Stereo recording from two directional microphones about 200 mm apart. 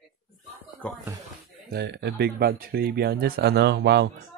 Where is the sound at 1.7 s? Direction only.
55° right (ahead or behind).